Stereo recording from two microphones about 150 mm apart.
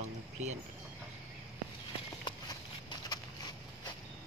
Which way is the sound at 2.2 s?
30° left (ahead or behind).